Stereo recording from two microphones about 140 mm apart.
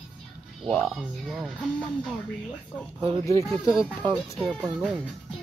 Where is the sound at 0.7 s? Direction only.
Centre (ahead or behind).